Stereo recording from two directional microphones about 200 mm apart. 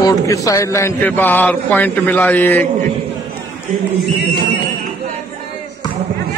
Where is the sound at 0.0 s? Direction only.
15° left (ahead or behind).